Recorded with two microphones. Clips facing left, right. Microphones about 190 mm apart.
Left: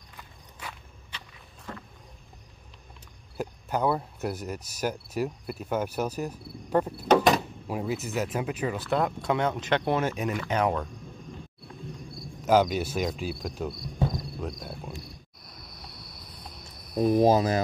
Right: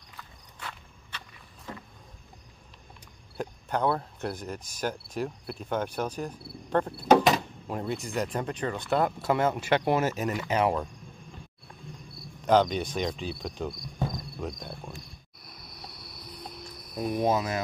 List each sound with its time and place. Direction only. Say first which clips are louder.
0.2 s walk: even; 10° left (ahead or behind)
3.3 s speech: left 1 dB; 5° left (ahead or behind)
4.6 s cricket: left 2 dB; 10° left (ahead or behind)
7.2 s speech: left 2 dB; 5° left (ahead or behind)
12.4 s speech: left 1 dB; 5° left (ahead or behind)
17.0 s speech: left 6 dB; 35° left (ahead or behind)